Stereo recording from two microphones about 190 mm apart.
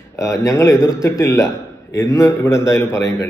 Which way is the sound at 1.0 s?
15° left (ahead or behind).